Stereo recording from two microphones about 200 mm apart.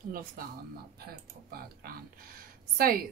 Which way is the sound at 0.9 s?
50° right (ahead or behind).